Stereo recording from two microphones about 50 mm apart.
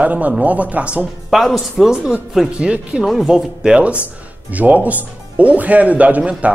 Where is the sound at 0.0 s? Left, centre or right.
Right.